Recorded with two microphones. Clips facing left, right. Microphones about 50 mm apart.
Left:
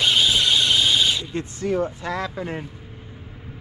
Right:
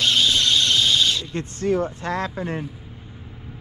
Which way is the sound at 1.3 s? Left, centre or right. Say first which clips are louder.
Right 2 dB; right.